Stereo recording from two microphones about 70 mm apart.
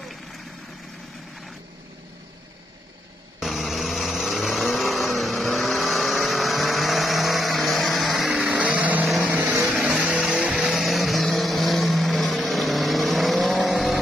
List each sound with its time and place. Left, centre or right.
3.3 s vehicle: centre
8.5 s vehicle: centre
9.7 s vehicle: centre
10.7 s vehicle: centre